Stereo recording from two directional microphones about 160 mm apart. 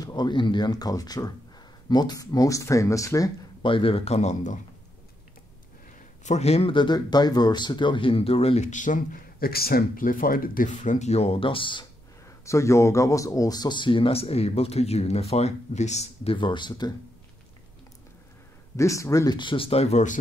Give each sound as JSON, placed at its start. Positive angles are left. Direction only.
{"t": 0.0, "sound": "speech", "side_deg": 25}
{"t": 3.6, "sound": "speech", "side_deg": 35}
{"t": 6.2, "sound": "speech", "side_deg": 45}
{"t": 12.4, "sound": "speech", "side_deg": 20}
{"t": 18.8, "sound": "speech", "side_deg": 20}